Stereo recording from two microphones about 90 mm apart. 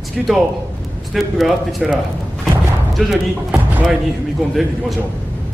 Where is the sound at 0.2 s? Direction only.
Centre (ahead or behind).